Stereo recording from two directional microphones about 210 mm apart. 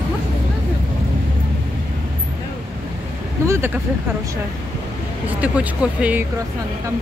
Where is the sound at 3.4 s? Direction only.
15° right (ahead or behind).